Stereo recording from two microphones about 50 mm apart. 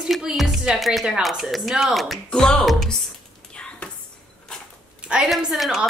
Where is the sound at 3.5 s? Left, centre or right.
Left.